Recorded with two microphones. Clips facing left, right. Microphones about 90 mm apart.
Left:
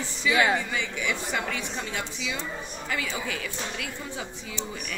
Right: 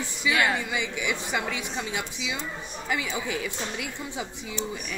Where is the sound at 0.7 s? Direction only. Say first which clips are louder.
Right 1 dB; 15° right (ahead or behind).